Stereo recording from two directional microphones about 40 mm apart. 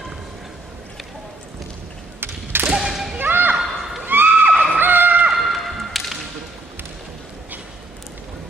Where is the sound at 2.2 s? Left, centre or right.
Right.